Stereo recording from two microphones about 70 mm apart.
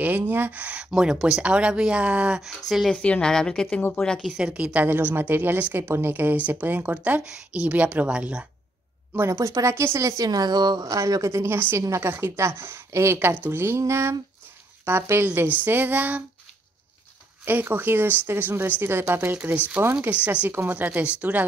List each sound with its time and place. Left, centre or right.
0.0 s a woman's voice: right
2.4 s speech: centre
3.0 s a woman's voice: centre
4.2 s speech: centre
4.7 s a woman's voice: right
9.1 s speech: right
10.2 s a woman's voice: right
17.5 s a woman's voice: right
19.3 s a woman's voice: right